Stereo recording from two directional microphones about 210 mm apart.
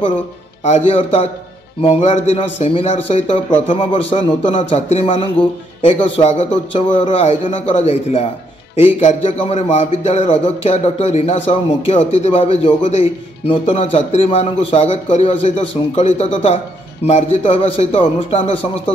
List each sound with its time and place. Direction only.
0.7 s a man's voice: 30° left (ahead or behind)